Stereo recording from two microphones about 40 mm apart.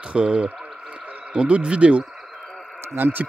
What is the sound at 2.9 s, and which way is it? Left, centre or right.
Speech, right.